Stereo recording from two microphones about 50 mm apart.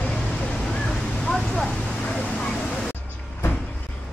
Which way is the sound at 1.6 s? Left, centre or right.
Left.